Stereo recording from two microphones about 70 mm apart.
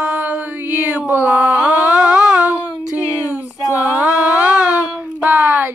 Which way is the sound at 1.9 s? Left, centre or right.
Centre.